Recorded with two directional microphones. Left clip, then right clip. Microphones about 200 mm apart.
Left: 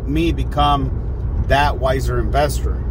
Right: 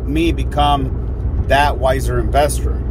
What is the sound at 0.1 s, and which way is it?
Speech, 15° left (ahead or behind).